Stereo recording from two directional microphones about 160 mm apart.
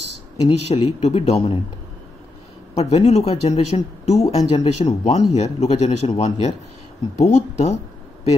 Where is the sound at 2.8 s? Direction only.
40° left (ahead or behind).